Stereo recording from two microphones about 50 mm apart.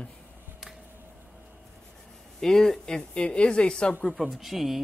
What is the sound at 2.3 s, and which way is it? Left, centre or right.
A woman's voice, centre.